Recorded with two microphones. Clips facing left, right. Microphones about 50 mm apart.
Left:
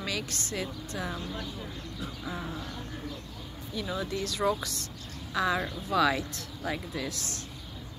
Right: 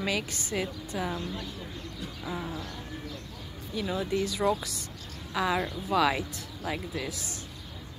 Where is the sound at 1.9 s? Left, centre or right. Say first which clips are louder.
Right 1 dB; centre.